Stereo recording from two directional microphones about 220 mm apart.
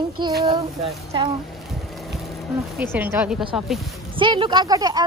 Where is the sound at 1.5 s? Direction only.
Centre (ahead or behind).